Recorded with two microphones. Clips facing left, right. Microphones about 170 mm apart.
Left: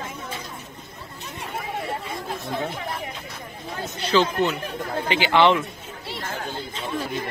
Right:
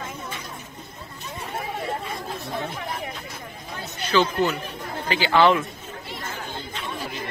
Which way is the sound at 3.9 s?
30° left (ahead or behind).